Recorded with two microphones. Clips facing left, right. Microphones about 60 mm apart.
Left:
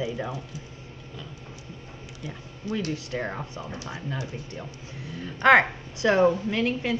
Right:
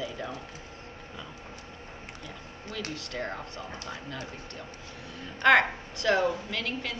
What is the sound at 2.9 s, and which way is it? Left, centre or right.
Speech, centre.